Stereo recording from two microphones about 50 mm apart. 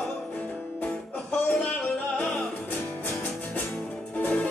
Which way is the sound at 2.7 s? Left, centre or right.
Left.